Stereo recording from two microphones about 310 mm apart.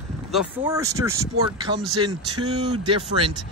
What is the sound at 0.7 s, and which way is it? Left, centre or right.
A man's voice, centre.